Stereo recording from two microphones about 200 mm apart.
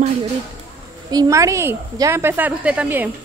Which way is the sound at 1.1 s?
15° right (ahead or behind).